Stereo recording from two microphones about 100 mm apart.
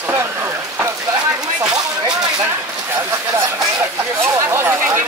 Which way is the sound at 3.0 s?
25° right (ahead or behind).